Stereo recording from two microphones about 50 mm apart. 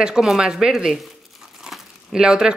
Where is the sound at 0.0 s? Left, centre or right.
Centre.